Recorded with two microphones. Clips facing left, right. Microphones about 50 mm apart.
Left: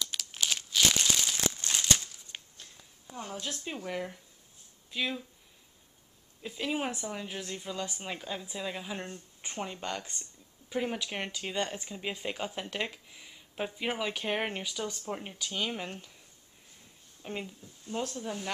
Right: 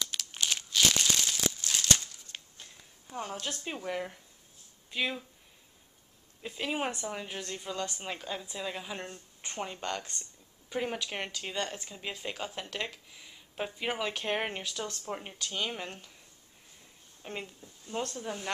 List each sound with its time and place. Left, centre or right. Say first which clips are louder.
0.1 s crumpling: even; centre
1.6 s crumpling: even; centre
1.9 s a sound: even; centre
2.5 s a sound: right 1 dB; centre
3.3 s speech: even; centre
6.4 s speech: even; centre
17.2 s speech: left 2 dB; centre